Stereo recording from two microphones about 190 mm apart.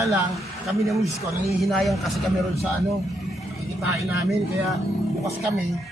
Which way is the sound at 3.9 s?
15° right (ahead or behind).